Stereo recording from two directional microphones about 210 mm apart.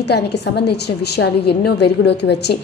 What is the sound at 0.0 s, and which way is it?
A woman's voice, 55° left (ahead or behind).